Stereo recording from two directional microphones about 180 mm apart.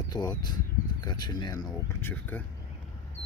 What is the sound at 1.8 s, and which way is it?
Speech, 10° left (ahead or behind).